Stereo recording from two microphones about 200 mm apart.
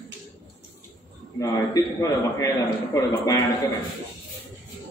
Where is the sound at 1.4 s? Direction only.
15° left (ahead or behind).